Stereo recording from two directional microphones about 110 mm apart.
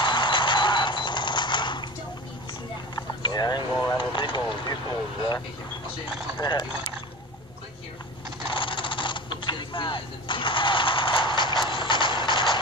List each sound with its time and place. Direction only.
0.0 s typewriter: 45° left (ahead or behind)
3.3 s vehicle: 40° left (ahead or behind)
6.0 s speech: 5° right (ahead or behind)
6.4 s speech: 40° left (ahead or behind)
8.5 s a sound: 50° left (ahead or behind)